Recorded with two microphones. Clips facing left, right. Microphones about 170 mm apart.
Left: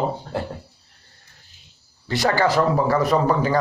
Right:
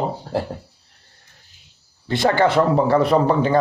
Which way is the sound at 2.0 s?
20° right (ahead or behind).